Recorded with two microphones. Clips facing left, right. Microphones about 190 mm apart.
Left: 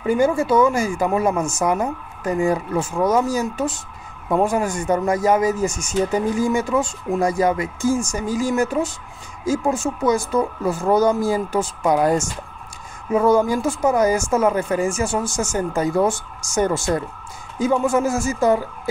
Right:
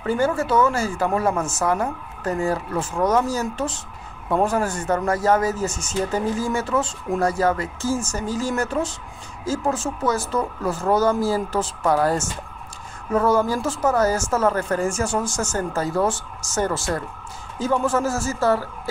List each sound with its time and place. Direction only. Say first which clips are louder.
0.0 s speech: left 3 dB; 10° left (ahead or behind)